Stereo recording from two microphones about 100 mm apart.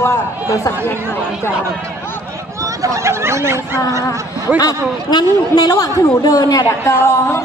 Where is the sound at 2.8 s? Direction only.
30° right (ahead or behind).